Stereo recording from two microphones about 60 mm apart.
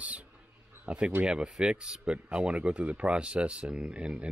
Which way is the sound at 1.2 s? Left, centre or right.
Centre.